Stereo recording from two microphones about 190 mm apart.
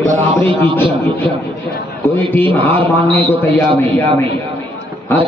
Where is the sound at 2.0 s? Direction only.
10° left (ahead or behind).